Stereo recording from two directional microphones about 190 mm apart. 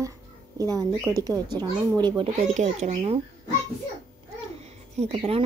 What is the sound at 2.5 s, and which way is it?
Speech, 40° right (ahead or behind).